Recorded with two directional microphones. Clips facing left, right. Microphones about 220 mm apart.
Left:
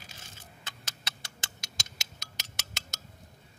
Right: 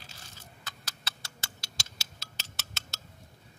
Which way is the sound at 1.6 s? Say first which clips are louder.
Left 1 dB; 15° left (ahead or behind).